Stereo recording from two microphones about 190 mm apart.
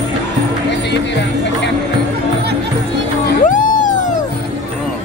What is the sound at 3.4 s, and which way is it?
Cat, 40° left (ahead or behind).